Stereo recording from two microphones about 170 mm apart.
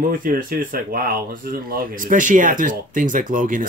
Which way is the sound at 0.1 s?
55° right (ahead or behind).